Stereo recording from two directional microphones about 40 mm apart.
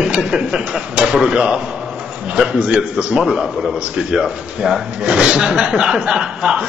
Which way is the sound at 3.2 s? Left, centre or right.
Centre.